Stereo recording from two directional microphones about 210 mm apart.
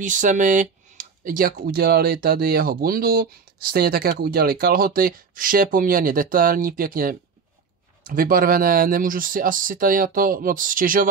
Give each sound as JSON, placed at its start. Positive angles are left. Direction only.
{"t": 0.0, "sound": "speech", "side_deg": -35}